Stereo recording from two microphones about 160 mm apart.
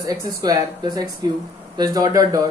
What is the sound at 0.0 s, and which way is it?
Speech, 20° right (ahead or behind).